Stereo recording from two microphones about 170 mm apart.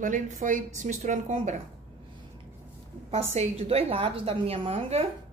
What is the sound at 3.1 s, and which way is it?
Speech, 40° right (ahead or behind).